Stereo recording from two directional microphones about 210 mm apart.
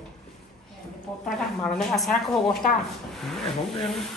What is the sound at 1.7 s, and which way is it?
Speech, centre (ahead or behind).